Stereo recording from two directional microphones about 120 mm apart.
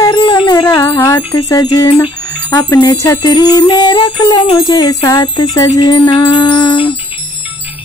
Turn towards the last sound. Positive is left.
turn(degrees=40)  # may be behind; listen again after turning